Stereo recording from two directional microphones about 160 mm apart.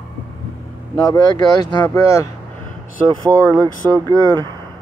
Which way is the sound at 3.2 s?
25° right (ahead or behind).